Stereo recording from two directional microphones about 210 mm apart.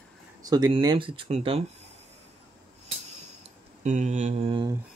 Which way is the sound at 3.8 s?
35° right (ahead or behind).